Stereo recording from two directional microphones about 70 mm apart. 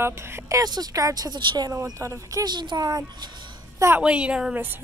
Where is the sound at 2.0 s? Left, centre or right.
Right.